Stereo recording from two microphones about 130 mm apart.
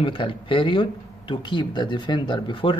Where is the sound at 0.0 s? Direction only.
40° left (ahead or behind).